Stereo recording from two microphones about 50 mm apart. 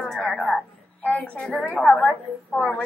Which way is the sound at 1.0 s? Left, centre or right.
Left.